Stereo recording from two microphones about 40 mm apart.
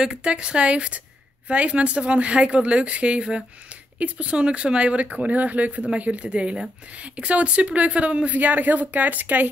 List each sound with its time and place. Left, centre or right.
0.0 s speech: right
8.4 s speech: right